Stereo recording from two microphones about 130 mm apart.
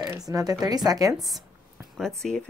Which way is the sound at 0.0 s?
25° right (ahead or behind).